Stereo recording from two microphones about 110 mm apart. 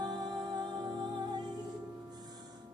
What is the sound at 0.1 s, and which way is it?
Music, 40° right (ahead or behind).